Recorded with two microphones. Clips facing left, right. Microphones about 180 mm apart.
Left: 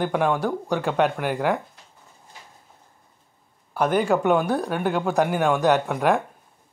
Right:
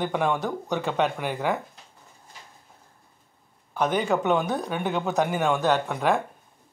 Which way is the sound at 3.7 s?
5° left (ahead or behind).